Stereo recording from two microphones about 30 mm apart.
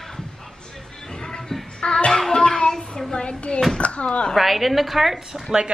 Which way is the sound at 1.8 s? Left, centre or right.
Left.